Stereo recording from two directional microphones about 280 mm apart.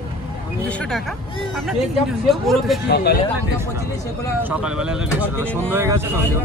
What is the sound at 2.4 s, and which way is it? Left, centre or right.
Speech, centre.